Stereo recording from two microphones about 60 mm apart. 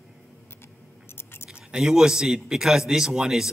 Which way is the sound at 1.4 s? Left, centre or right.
Centre.